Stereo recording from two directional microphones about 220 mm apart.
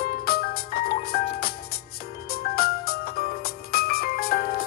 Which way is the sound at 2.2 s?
45° left (ahead or behind).